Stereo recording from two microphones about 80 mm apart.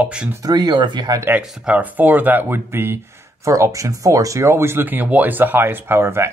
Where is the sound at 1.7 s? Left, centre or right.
Right.